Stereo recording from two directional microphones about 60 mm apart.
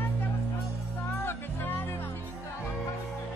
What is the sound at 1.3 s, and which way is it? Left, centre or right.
Music, left.